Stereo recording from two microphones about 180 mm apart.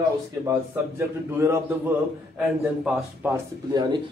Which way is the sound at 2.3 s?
5° right (ahead or behind).